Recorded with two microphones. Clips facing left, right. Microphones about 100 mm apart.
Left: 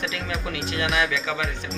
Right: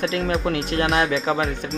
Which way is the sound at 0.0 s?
40° right (ahead or behind).